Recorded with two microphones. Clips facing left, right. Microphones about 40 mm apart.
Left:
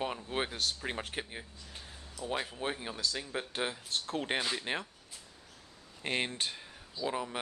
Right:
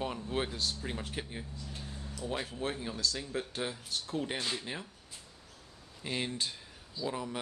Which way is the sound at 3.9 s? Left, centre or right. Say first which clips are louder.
Left 2 dB; left.